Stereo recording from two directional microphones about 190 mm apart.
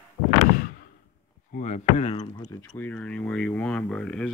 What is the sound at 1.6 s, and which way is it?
Speech, 40° left (ahead or behind).